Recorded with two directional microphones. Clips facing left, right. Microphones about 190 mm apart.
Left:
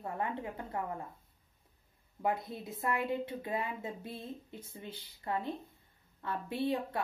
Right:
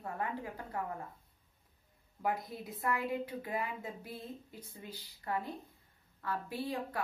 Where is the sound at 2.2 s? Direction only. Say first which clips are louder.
Left 2 dB; 25° left (ahead or behind).